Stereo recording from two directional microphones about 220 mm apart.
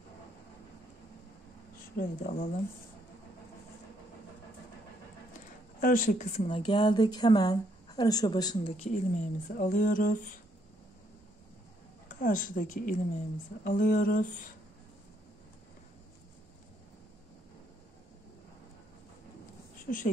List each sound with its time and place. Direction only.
2.0 s speech: 40° left (ahead or behind)
5.8 s a woman's voice: 40° left (ahead or behind)
12.1 s speech: 35° left (ahead or behind)
19.9 s speech: 35° left (ahead or behind)